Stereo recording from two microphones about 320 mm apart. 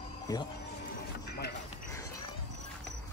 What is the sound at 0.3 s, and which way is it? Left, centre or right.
Speech, centre.